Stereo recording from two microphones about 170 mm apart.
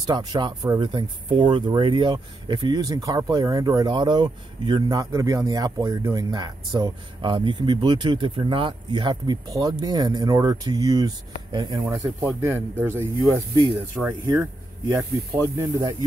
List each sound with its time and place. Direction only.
0.0 s speech: 25° right (ahead or behind)
12.4 s speech: 15° right (ahead or behind)
15.0 s speech: 15° right (ahead or behind)